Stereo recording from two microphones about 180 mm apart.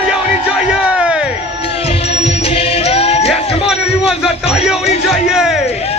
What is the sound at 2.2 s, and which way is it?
Music, 35° left (ahead or behind).